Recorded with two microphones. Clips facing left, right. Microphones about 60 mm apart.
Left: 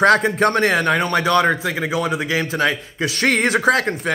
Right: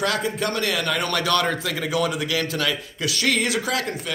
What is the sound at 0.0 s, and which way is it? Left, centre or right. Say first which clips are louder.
A man's voice: left 9 dB; left.